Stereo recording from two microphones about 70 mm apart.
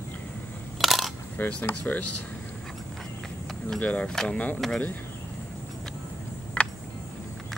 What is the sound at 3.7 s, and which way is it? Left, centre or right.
Speech, centre.